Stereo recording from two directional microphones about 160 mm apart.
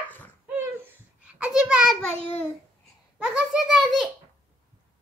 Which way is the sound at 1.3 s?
10° right (ahead or behind).